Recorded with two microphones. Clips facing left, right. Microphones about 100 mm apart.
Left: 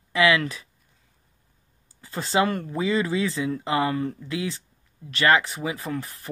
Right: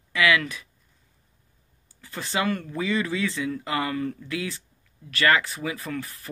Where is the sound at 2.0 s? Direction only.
25° left (ahead or behind).